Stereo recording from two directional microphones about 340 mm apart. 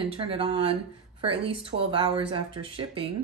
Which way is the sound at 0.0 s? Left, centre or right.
Centre.